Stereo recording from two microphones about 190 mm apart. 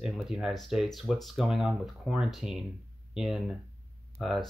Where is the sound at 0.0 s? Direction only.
5° right (ahead or behind).